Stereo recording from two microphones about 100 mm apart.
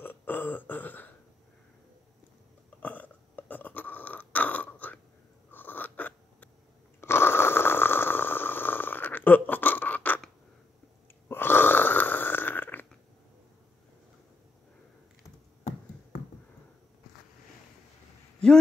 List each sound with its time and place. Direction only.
0.0 s burping: 20° left (ahead or behind)
2.8 s burping: 15° left (ahead or behind)
5.5 s a sound: 20° left (ahead or behind)
7.0 s snoring: 25° left (ahead or behind)
11.2 s burping: 20° left (ahead or behind)